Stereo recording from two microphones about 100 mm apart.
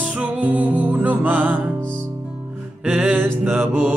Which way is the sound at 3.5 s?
15° right (ahead or behind).